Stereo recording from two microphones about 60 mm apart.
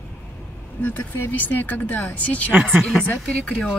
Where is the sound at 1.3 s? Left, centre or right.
Left.